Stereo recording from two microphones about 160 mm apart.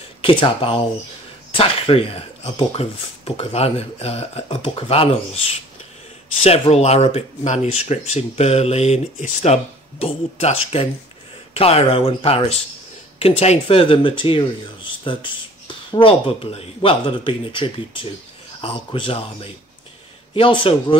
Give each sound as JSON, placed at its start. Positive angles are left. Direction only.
{"t": 0.2, "sound": "speech", "side_deg": 35}